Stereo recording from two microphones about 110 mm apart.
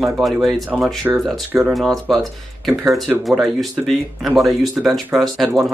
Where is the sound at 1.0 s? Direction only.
15° right (ahead or behind).